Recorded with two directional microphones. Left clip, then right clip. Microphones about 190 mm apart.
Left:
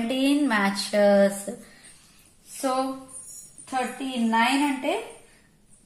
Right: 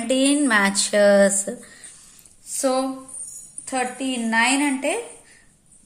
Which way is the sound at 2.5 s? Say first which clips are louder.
Right 5 dB; 35° right (ahead or behind).